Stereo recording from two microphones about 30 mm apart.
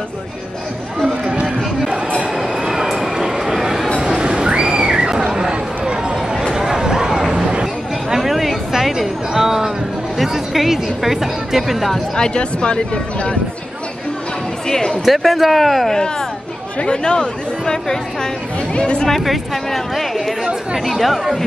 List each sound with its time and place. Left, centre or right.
2.7 s a sound: centre
4.2 s a sound: right
6.5 s a sound: centre
8.2 s chatter: centre
9.0 s a sound: centre
10.1 s music: centre
12.2 s speech: left
14.7 s speech: centre
15.0 s speech: centre
15.9 s speech: centre
16.8 s speech: left
19.0 s speech: centre
20.0 s chatter: centre
20.8 s speech: centre